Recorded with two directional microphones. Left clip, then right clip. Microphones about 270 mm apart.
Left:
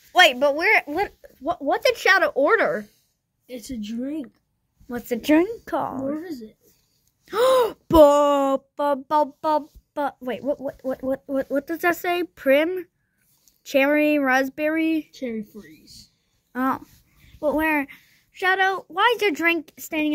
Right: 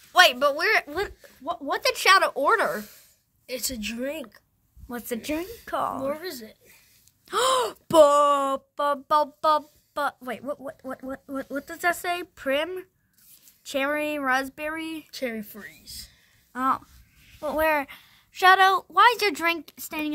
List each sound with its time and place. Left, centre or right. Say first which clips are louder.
0.1 s speech: left 2 dB; centre
2.9 s a sound: right 10 dB; right
4.8 s speech: left 5 dB; centre
5.2 s a woman's voice: left 15 dB; centre
5.7 s speech: left 2 dB; centre
7.2 s speech: left 5 dB; centre
15.8 s speech: right 5 dB; right
16.5 s speech: even; centre